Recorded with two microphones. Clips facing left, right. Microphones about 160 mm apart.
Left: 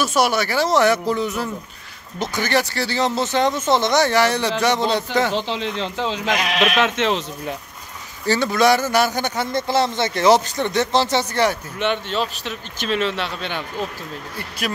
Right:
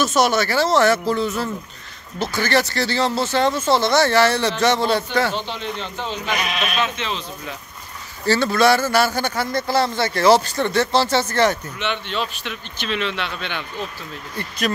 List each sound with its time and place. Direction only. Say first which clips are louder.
0.0 s a man's voice: right 1 dB; 10° left (ahead or behind)
5.3 s speech: left 3 dB; 90° left; by 7.2 s 70° left (ahead or behind)
8.3 s a man's voice: even; 15° left (ahead or behind)
11.8 s speech: left 5 dB; 40° left (ahead or behind)